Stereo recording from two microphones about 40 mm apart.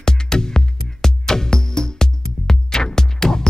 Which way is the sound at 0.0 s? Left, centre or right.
Centre.